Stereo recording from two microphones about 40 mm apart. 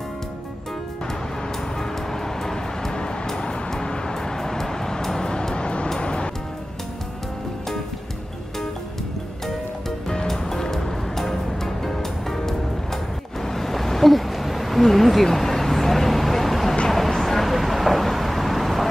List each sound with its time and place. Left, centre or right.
1.8 s music: centre
9.8 s music: centre
13.4 s a sound: centre
16.9 s vehicle: centre